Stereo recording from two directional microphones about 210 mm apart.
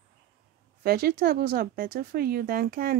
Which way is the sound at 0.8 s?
45° right (ahead or behind).